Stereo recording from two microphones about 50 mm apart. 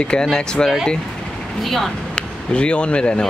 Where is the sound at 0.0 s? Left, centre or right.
Centre.